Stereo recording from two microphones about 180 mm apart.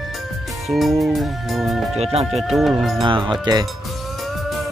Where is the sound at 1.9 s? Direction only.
35° right (ahead or behind).